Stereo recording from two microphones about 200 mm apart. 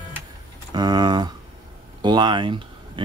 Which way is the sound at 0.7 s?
20° right (ahead or behind).